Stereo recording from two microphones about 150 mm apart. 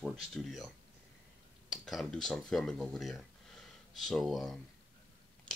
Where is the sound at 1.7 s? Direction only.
Centre (ahead or behind).